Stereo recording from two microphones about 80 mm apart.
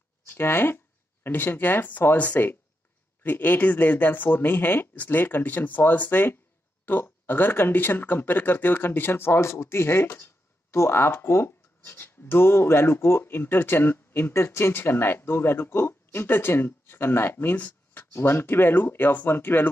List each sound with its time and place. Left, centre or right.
0.3 s speech: left